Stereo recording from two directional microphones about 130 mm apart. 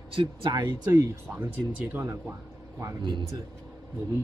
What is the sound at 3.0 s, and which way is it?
Speech, 35° right (ahead or behind).